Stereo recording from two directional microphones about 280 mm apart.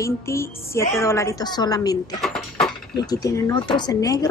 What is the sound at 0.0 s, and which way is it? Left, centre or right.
A woman's voice, centre.